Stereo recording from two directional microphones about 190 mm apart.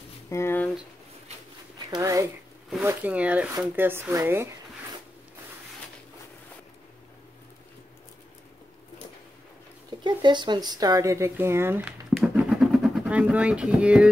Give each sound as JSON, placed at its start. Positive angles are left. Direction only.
{"t": 0.3, "sound": "a sound", "side_deg": 15}
{"t": 1.9, "sound": "speech", "side_deg": -15}
{"t": 9.8, "sound": "speech", "side_deg": -25}